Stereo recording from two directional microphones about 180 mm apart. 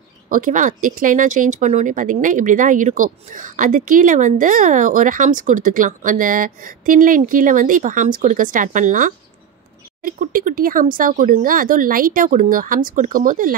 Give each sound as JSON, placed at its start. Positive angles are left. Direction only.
{"t": 0.3, "sound": "speech", "side_deg": -45}